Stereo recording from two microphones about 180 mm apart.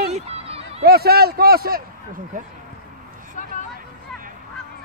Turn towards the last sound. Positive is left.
turn(degrees=45)  # may be behind; listen again after turning